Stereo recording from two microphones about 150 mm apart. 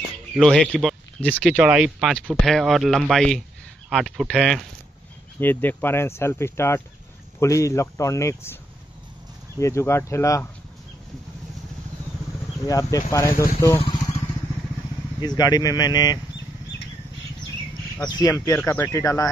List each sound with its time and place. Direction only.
0.3 s speech: 5° left (ahead or behind)
1.6 s speech: 5° right (ahead or behind); by 8.5 s 20° left (ahead or behind)
9.6 s speech: 20° left (ahead or behind)
12.6 s speech: 25° left (ahead or behind)
13.7 s vehicle: 30° left (ahead or behind)
15.1 s speech: 25° left (ahead or behind)
18.1 s speech: 25° left (ahead or behind)